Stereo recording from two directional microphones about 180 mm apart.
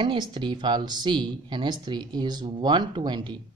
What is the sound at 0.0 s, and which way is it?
Speech, 25° right (ahead or behind).